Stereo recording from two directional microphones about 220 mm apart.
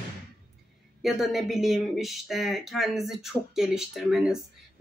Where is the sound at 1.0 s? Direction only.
Centre (ahead or behind).